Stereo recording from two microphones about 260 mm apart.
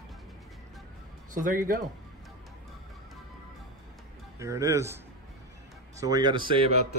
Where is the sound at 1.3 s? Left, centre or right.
Right.